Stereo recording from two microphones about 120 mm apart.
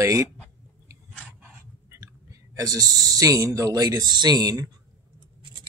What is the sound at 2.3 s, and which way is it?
Speech, 30° right (ahead or behind).